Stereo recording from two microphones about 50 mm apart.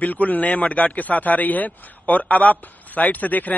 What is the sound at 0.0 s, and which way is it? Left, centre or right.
Speech, left.